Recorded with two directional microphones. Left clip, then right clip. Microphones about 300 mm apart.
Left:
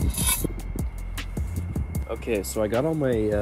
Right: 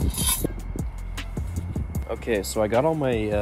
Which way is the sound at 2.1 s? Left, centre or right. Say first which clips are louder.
Right 2 dB; right.